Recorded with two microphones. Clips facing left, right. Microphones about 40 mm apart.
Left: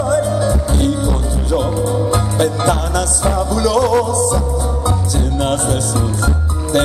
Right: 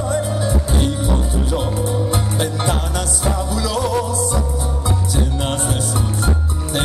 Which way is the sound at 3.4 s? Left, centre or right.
Centre.